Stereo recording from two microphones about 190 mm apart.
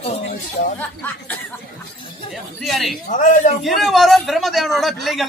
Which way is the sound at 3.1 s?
40° left (ahead or behind).